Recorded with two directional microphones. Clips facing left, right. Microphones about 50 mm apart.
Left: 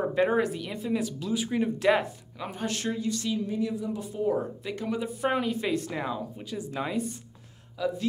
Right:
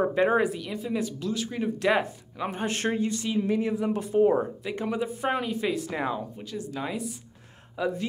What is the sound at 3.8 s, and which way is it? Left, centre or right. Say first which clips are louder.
Speech: right 8 dB; right.